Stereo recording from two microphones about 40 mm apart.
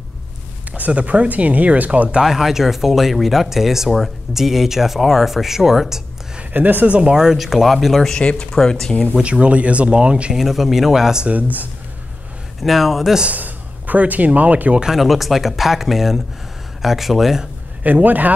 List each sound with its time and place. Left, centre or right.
0.7 s speech: right
2.2 s speech: centre
6.5 s speech: right
7.0 s speech: centre
8.2 s speech: left
8.5 s speech: centre
9.2 s speech: right
10.3 s speech: centre
11.2 s speech: right
12.6 s speech: centre
13.3 s speech: right
15.0 s speech: centre
18.0 s speech: right